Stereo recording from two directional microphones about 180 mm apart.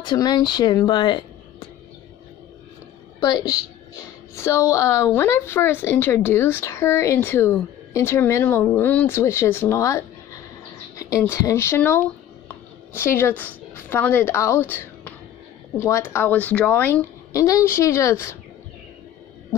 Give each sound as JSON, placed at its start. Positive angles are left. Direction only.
{"t": 0.0, "sound": "speech", "side_deg": 25}
{"t": 4.4, "sound": "a woman's voice", "side_deg": 15}